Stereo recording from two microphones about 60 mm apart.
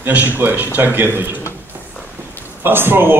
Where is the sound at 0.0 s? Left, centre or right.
Right.